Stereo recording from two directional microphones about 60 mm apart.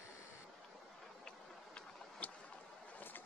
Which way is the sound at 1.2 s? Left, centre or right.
Centre.